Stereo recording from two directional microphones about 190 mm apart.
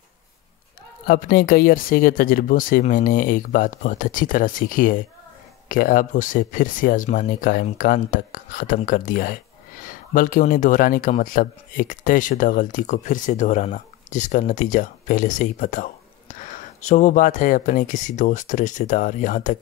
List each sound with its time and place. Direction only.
1.0 s speech: 50° left (ahead or behind)